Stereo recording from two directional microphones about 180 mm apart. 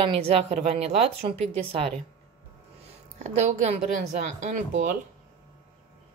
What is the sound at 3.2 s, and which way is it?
Speech, 40° right (ahead or behind).